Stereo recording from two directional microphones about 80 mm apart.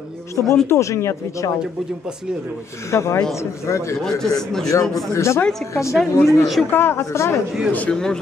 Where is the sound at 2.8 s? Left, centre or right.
Left.